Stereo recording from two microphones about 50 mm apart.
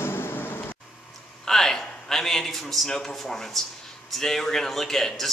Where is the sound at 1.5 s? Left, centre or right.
Centre.